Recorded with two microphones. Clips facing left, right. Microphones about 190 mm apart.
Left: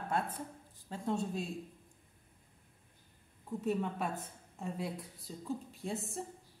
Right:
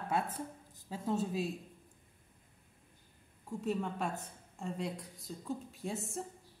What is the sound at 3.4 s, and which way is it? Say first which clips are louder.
A woman's voice: left 1 dB; 5° left (ahead or behind).